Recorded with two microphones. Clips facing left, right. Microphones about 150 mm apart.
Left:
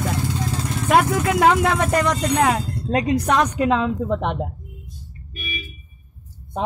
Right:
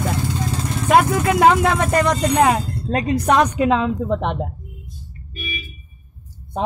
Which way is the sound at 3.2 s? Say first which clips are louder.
Right 3 dB; 15° right (ahead or behind).